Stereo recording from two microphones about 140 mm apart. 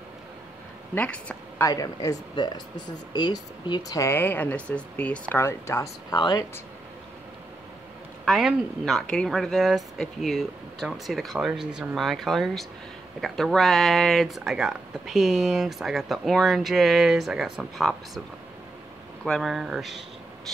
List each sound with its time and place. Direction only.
0.9 s speech: 10° left (ahead or behind)
1.6 s speech: 25° left (ahead or behind)
6.1 s speech: 30° left (ahead or behind)
8.3 s speech: centre (ahead or behind)
19.2 s speech: centre (ahead or behind)